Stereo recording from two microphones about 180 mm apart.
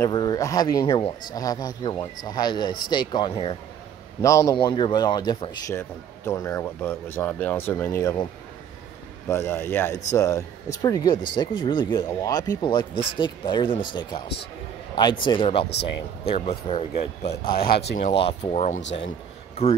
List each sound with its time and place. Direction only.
0.0 s speech: 20° left (ahead or behind)
4.2 s speech: 15° left (ahead or behind)
9.3 s speech: 15° left (ahead or behind); by 18.8 s 40° left (ahead or behind)
18.8 s speech: 85° left